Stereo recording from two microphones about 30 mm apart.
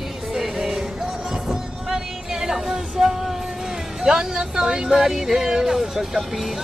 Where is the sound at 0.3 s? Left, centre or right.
Centre.